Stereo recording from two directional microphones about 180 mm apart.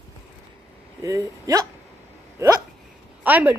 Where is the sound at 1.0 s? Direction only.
15° right (ahead or behind).